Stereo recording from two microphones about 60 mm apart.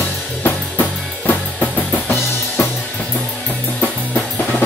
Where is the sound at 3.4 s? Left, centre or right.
Left.